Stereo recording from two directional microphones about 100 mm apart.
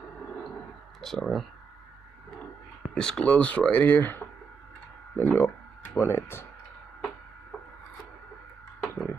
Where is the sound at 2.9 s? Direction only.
10° left (ahead or behind); by 6.4 s 25° left (ahead or behind).